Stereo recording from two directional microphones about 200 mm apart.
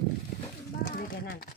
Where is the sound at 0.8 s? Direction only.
45° left (ahead or behind).